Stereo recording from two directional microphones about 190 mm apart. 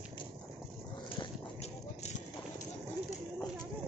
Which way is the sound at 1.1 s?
35° left (ahead or behind).